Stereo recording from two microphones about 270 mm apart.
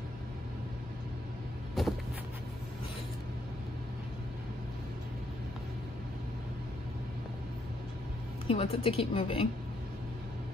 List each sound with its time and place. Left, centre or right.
1.8 s vehicle: centre
8.5 s a woman's voice: left